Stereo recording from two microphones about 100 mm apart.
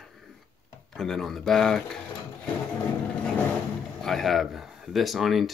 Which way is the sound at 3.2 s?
15° left (ahead or behind).